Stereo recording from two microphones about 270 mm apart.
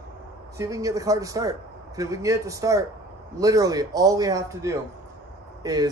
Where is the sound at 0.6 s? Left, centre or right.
Centre.